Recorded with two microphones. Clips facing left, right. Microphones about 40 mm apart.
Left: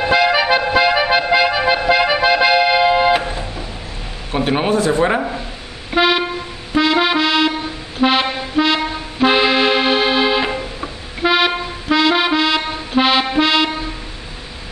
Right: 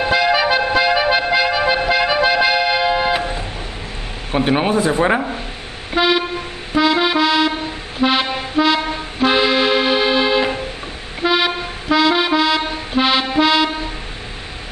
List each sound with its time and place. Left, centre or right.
0.0 s music: centre
4.3 s speech: centre
4.7 s speech: centre
5.9 s toot: centre
6.7 s accordion: centre
13.4 s music: centre